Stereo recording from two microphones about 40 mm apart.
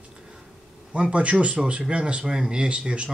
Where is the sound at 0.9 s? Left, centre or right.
Right.